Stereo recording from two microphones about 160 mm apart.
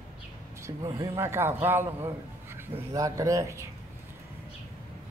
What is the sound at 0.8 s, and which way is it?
Speech, 25° right (ahead or behind).